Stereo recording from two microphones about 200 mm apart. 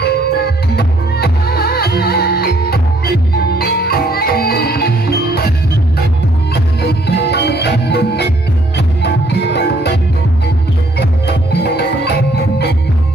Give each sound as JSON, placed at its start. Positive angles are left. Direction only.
{"t": 0.0, "sound": "music", "side_deg": 55}
{"t": 6.5, "sound": "music", "side_deg": 55}
{"t": 11.0, "sound": "music", "side_deg": 55}